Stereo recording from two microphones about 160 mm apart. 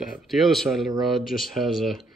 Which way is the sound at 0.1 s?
Centre (ahead or behind).